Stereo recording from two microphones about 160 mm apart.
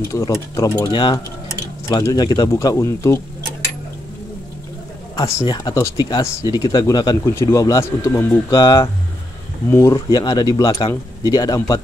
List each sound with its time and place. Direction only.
0.1 s speech: 20° left (ahead or behind)
5.1 s speech: 25° left (ahead or behind)